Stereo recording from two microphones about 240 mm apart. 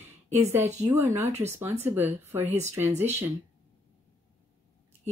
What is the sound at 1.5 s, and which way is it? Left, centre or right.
Speech, centre.